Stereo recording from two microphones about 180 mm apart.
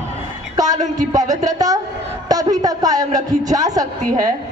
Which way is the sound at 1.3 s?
20° right (ahead or behind).